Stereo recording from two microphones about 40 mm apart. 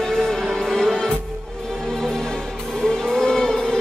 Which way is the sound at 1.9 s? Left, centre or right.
Centre.